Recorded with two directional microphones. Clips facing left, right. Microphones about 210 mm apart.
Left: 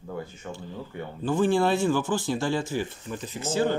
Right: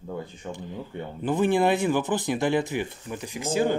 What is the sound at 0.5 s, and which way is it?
Speech, 15° right (ahead or behind).